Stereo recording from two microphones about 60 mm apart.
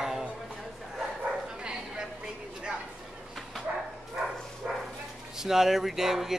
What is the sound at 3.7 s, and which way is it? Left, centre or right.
Bow-wow, right.